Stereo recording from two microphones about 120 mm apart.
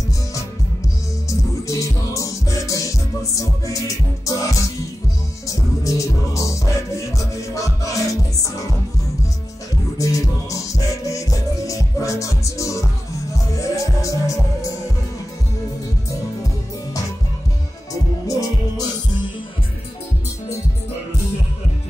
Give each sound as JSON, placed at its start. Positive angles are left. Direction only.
{"t": 1.7, "sound": "music", "side_deg": 25}
{"t": 9.9, "sound": "music", "side_deg": 30}
{"t": 18.2, "sound": "music", "side_deg": 30}